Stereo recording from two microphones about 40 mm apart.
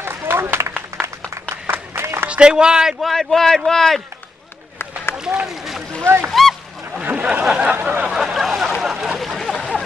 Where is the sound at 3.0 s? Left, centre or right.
Centre.